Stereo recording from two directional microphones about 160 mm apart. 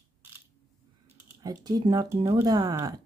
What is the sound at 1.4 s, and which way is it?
Speech, 25° right (ahead or behind).